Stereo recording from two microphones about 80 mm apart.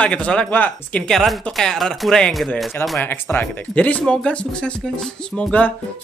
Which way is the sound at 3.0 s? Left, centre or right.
Left.